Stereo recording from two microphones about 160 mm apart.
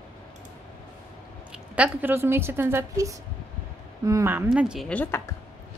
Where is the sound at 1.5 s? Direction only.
10° right (ahead or behind).